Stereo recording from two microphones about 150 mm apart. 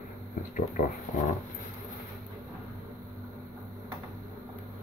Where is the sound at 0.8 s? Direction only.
60° left (ahead or behind).